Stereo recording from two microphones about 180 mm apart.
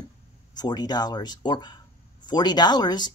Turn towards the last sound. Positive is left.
turn(degrees=25)  # may be behind; listen again after turning